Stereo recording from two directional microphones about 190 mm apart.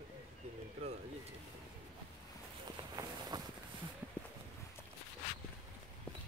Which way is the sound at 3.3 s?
20° right (ahead or behind).